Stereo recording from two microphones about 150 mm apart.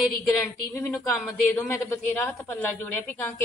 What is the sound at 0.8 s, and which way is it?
A woman's voice, 10° left (ahead or behind).